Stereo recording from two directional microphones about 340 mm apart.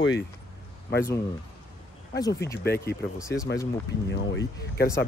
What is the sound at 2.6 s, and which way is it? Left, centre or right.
Speech, left.